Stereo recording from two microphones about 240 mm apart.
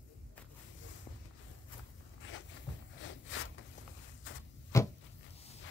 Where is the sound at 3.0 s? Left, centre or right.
Left.